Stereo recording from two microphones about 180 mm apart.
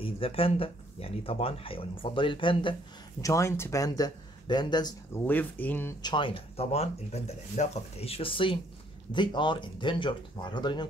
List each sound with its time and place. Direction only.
0.0 s speech: 30° left (ahead or behind)
3.2 s speech: 15° left (ahead or behind)
5.2 s speech: 10° left (ahead or behind)
6.0 s speech: 30° left (ahead or behind)